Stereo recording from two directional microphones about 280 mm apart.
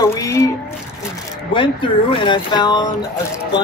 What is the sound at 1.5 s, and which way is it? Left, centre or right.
Speech, centre.